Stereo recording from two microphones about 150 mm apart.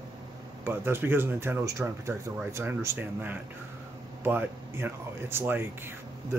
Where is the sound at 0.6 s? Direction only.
15° right (ahead or behind).